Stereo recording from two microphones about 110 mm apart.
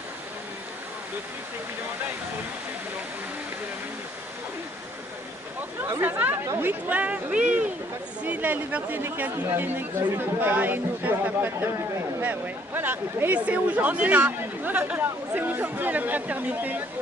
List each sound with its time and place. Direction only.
6.0 s speech: 15° right (ahead or behind)